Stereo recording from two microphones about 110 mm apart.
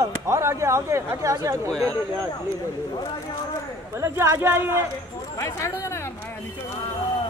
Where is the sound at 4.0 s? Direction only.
25° right (ahead or behind).